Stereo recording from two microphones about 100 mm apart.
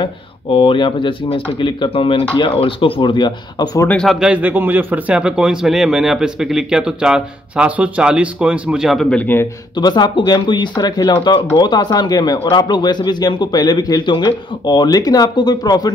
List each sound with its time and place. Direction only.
0.5 s speech: 65° left (ahead or behind); by 3.6 s 50° left (ahead or behind)
4.0 s speech: centre (ahead or behind)
4.3 s a man's voice: 15° right (ahead or behind); by 9.1 s centre (ahead or behind)
9.1 s a man's voice: 20° left (ahead or behind)
9.8 s speech: 45° left (ahead or behind)